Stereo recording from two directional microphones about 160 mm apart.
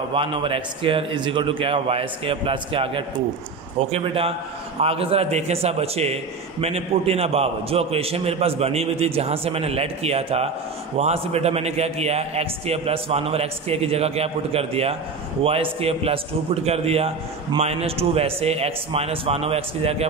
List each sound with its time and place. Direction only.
0.1 s a man's voice: 35° right (ahead or behind)